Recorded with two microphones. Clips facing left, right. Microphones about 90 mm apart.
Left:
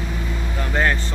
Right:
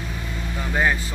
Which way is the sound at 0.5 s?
10° right (ahead or behind).